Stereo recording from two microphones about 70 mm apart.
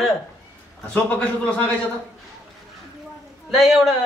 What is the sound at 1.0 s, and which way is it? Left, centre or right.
Speech, centre.